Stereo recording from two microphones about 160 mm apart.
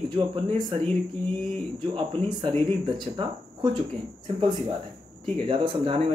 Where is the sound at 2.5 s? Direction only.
30° right (ahead or behind).